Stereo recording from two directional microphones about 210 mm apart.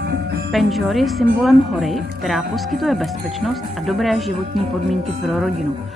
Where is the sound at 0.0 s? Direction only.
50° right (ahead or behind).